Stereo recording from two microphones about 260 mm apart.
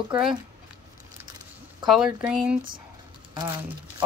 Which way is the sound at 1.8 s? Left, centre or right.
Centre.